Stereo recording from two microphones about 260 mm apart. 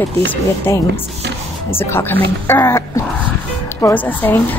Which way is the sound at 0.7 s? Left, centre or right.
Centre.